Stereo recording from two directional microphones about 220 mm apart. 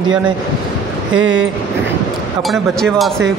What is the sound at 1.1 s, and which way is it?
Speech, 60° right (ahead or behind).